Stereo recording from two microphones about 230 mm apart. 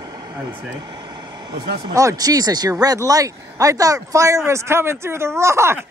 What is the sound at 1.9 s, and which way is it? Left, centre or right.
Speech, centre.